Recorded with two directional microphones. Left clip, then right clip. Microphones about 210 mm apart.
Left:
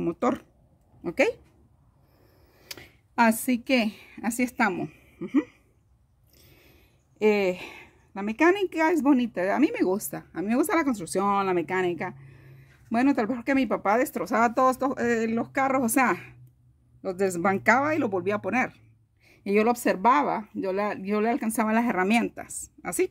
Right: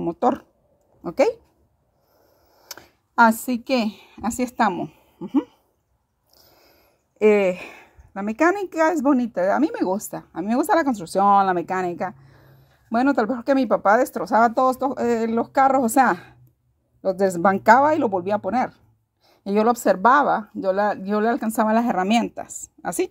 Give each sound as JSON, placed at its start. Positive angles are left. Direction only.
{"t": 0.1, "sound": "a woman's voice", "side_deg": 0}
{"t": 2.6, "sound": "a woman's voice", "side_deg": -5}
{"t": 6.4, "sound": "a sound", "side_deg": -15}
{"t": 7.2, "sound": "a woman's voice", "side_deg": -20}